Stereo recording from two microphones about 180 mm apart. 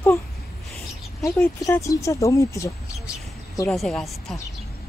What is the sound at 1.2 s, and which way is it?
Speech, 15° left (ahead or behind).